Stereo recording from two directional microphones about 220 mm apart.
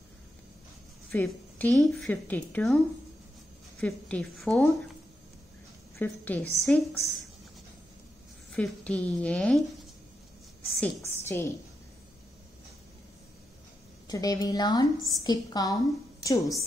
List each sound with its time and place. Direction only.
1.1 s a woman's voice: 5° left (ahead or behind)
3.8 s a woman's voice: 5° left (ahead or behind)
5.9 s a woman's voice: 10° left (ahead or behind)
8.5 s a woman's voice: 5° left (ahead or behind)
10.8 s a woman's voice: 10° left (ahead or behind)
14.0 s a woman's voice: 15° left (ahead or behind)